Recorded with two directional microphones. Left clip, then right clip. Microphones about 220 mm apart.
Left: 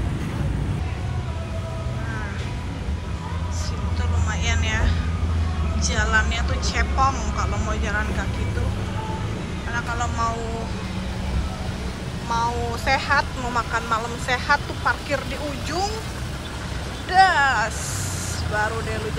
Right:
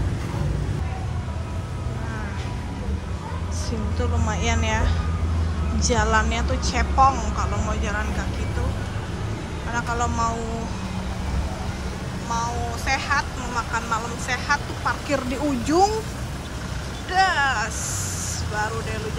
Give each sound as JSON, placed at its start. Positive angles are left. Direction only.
{"t": 4.3, "sound": "vehicle", "side_deg": -30}
{"t": 5.9, "sound": "a woman's voice", "side_deg": -30}
{"t": 9.9, "sound": "a woman's voice", "side_deg": -20}
{"t": 12.3, "sound": "speech", "side_deg": -10}
{"t": 15.6, "sound": "speech", "side_deg": -35}
{"t": 17.1, "sound": "speech", "side_deg": -15}